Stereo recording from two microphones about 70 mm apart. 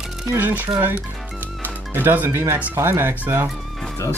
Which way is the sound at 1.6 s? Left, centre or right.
Right.